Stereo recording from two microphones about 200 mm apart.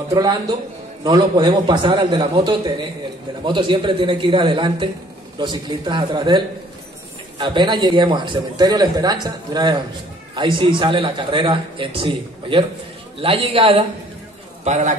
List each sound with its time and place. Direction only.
0.1 s a man's voice: 20° right (ahead or behind)